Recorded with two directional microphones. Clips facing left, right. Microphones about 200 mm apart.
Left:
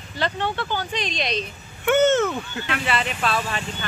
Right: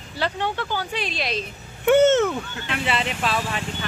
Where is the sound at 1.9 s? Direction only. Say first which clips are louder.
Right 2 dB; 30° right (ahead or behind).